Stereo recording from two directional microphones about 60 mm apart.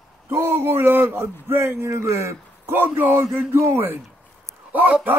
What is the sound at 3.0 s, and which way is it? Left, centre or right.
Speech, right.